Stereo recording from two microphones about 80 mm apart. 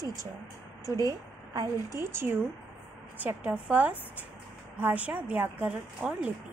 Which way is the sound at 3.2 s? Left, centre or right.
Right.